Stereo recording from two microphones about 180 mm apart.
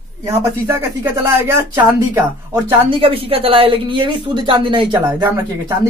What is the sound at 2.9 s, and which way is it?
Speech, 30° right (ahead or behind).